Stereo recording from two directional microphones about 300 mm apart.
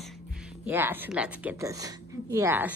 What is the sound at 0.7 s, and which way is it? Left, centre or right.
A woman's voice, centre.